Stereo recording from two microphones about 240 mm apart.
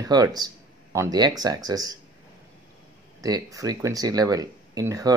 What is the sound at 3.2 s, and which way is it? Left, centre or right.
Speech, centre.